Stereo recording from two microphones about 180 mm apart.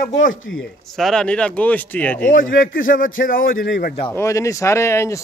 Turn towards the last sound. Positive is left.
turn(degrees=15)  # may be behind; listen again after turning